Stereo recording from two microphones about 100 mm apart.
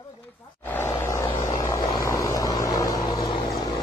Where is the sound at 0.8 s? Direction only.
30° left (ahead or behind).